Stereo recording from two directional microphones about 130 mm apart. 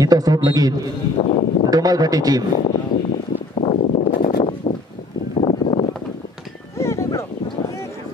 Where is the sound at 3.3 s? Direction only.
60° left (ahead or behind); by 4.3 s 85° left.